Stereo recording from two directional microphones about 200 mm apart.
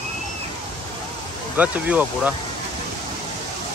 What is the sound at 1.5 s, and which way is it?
Speech, 10° right (ahead or behind).